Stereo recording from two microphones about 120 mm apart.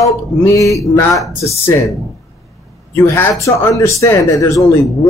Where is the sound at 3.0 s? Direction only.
20° left (ahead or behind).